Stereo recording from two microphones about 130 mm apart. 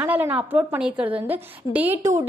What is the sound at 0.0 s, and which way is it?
A woman's voice, 15° right (ahead or behind).